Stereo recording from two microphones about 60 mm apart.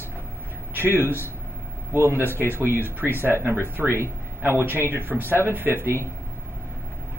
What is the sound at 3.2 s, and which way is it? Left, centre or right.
Speech, right.